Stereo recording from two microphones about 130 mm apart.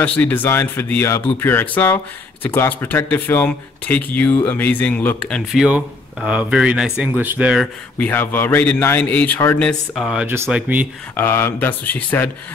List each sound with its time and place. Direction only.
0.0 s speech: 10° left (ahead or behind); by 7.6 s 10° right (ahead or behind)
8.0 s speech: 15° left (ahead or behind)
9.7 s speech: centre (ahead or behind)
10.2 s speech: 20° right (ahead or behind)
11.1 s speech: 15° left (ahead or behind)